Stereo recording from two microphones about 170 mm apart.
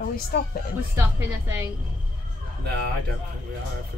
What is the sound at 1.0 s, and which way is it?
Speech, 15° right (ahead or behind).